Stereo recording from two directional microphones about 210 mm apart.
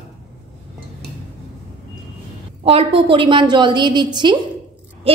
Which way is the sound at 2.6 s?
25° right (ahead or behind).